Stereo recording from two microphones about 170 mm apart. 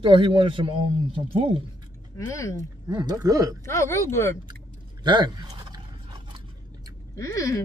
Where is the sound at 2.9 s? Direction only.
25° right (ahead or behind).